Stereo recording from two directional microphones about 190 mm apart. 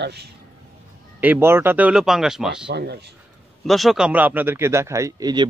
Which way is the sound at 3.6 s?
Centre (ahead or behind).